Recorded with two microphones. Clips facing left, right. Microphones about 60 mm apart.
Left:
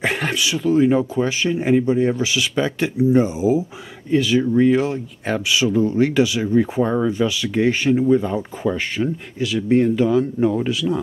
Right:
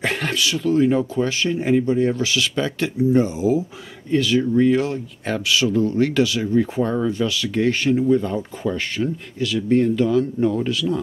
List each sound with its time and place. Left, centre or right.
0.0 s speech: centre